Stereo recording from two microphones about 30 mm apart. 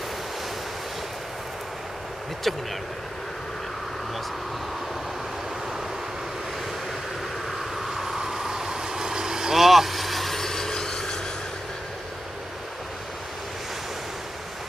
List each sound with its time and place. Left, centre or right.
2.4 s speech: centre
7.5 s vehicle: centre
9.6 s vehicle: centre